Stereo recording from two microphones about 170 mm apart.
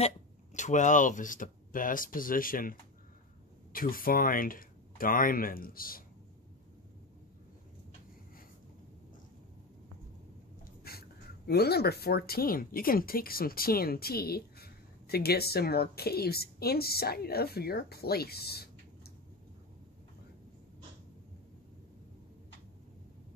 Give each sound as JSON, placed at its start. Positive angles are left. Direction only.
{"t": 0.6, "sound": "speech", "side_deg": 45}
{"t": 10.8, "sound": "speech", "side_deg": 65}